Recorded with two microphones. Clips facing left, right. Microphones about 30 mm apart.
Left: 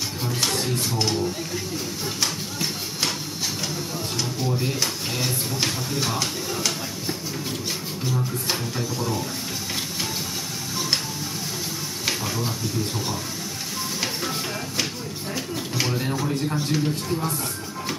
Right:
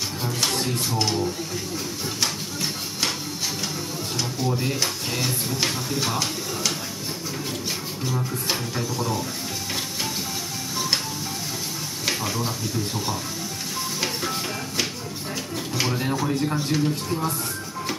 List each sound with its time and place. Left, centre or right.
0.2 s speech: centre
2.2 s a sound: centre
4.2 s speech: centre
8.0 s speech: centre
12.1 s speech: centre
14.0 s music: centre
15.5 s a sound: centre
16.5 s speech: centre